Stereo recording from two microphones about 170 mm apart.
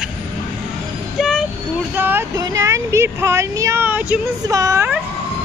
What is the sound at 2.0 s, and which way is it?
Speech, 10° right (ahead or behind).